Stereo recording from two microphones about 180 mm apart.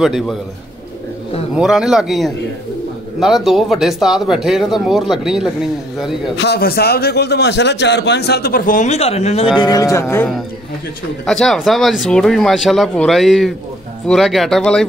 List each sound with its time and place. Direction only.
0.0 s speech: centre (ahead or behind)
1.5 s speech: 5° right (ahead or behind)
6.3 s a man's voice: 65° left (ahead or behind); by 9.5 s 35° left (ahead or behind)
9.6 s speech: 20° left (ahead or behind)
11.2 s speech: centre (ahead or behind)